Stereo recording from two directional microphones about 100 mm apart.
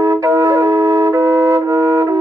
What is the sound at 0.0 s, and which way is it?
Flute, 35° right (ahead or behind).